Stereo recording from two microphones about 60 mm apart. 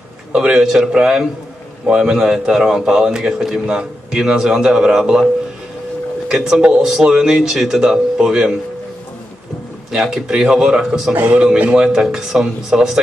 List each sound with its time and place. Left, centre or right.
0.3 s a man's voice: centre
6.6 s a man's voice: centre
9.8 s a man's voice: centre